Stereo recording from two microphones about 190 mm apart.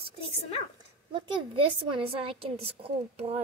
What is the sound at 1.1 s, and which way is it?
A woman's voice, 25° right (ahead or behind).